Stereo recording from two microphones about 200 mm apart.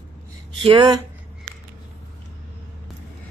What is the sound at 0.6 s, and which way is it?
Speech, 25° right (ahead or behind).